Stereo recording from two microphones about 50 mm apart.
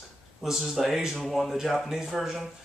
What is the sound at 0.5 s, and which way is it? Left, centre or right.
Speech, centre.